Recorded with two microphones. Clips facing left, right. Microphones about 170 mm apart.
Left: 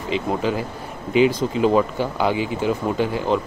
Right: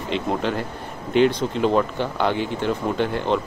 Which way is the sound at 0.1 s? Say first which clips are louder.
Left 2 dB; 5° left (ahead or behind).